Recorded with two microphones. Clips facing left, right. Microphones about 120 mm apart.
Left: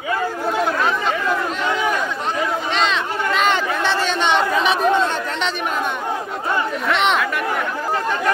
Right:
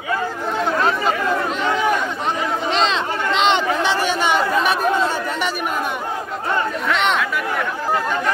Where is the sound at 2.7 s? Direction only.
30° right (ahead or behind).